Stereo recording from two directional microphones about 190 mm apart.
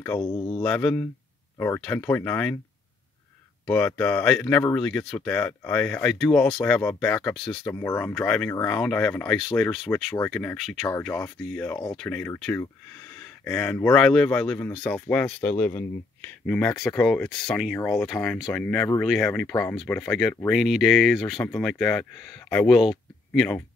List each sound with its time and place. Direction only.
0.2 s speech: 25° left (ahead or behind)
0.6 s speech: 5° left (ahead or behind)
3.6 s speech: 5° left (ahead or behind)